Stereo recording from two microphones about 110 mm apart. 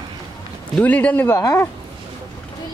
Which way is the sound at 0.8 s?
15° left (ahead or behind).